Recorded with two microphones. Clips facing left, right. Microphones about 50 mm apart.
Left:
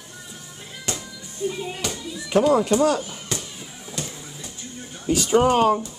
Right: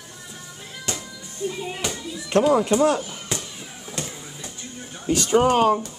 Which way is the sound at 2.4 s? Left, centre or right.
Centre.